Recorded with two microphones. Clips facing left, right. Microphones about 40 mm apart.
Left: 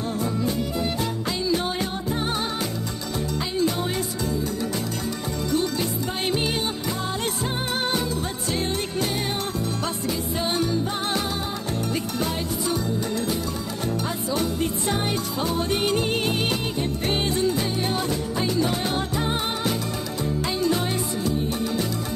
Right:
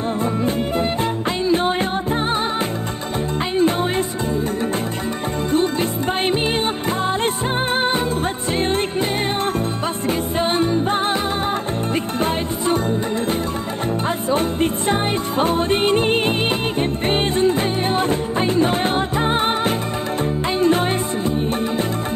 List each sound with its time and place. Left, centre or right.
0.2 s music: right
5.5 s music: right
10.0 s music: right
14.3 s music: right